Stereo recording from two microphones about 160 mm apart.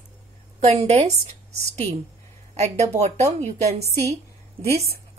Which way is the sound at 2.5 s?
45° right (ahead or behind).